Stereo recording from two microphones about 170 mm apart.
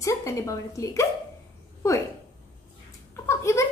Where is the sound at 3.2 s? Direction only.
15° left (ahead or behind).